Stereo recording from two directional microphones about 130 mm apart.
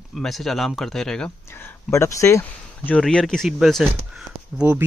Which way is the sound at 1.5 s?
20° left (ahead or behind).